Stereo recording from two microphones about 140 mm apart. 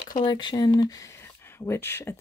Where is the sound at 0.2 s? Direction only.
30° left (ahead or behind).